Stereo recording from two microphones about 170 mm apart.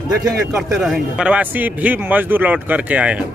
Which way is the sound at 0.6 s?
5° right (ahead or behind).